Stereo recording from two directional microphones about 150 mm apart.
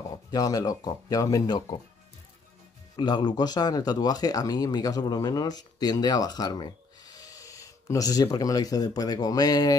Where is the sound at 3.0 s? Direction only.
30° left (ahead or behind).